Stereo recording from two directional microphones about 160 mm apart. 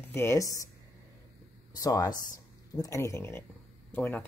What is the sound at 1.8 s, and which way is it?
Speech, 25° left (ahead or behind).